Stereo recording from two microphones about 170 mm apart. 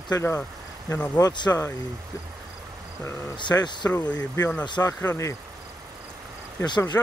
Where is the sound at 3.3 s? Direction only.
25° left (ahead or behind).